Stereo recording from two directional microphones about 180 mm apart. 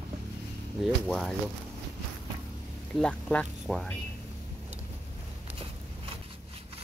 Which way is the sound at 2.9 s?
5° left (ahead or behind).